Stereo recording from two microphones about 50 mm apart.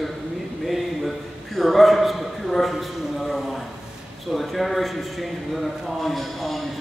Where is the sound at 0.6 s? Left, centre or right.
Centre.